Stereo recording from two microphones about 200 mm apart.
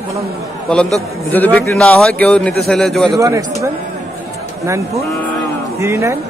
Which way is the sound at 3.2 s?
15° right (ahead or behind).